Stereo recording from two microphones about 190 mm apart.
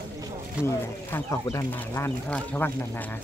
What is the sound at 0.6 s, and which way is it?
Speech, 15° left (ahead or behind).